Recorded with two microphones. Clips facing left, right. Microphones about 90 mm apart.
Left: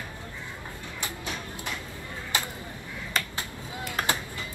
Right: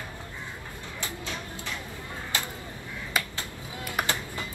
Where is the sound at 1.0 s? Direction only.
20° left (ahead or behind).